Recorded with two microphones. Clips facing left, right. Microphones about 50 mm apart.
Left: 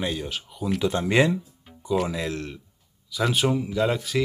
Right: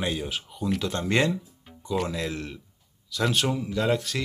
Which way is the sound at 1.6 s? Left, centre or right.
Centre.